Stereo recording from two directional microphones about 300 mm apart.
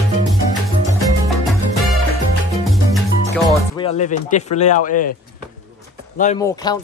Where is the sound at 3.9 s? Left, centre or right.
Left.